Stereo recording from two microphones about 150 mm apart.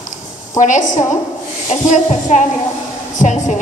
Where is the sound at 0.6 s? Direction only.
55° left (ahead or behind).